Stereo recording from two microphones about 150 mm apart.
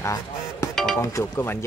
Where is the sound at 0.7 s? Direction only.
5° left (ahead or behind).